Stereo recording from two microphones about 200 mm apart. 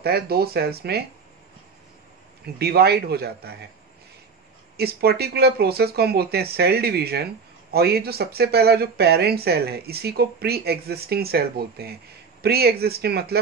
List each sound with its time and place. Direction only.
0.0 s speech: 50° right (ahead or behind)
2.6 s speech: 50° right (ahead or behind)
4.7 s speech: 50° right (ahead or behind)